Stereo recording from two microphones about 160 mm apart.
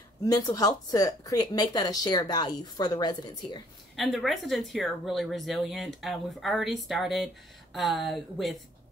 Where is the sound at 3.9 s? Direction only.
Centre (ahead or behind).